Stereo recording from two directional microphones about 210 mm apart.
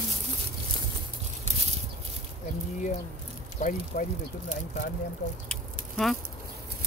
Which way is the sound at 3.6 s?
35° left (ahead or behind).